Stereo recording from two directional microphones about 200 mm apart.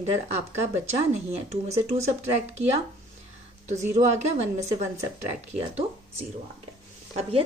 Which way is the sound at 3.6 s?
35° right (ahead or behind).